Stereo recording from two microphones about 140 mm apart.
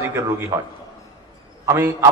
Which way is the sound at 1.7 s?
15° right (ahead or behind).